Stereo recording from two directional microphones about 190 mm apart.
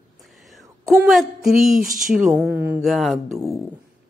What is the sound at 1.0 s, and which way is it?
A woman's voice, centre (ahead or behind).